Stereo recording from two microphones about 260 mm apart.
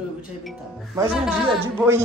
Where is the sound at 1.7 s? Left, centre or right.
Centre.